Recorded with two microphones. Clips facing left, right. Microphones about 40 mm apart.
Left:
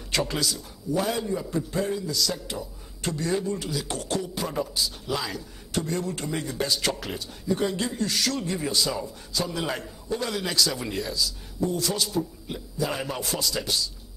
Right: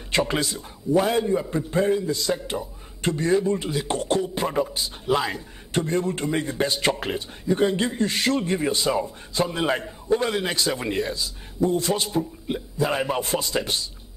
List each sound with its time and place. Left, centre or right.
0.1 s a man's voice: right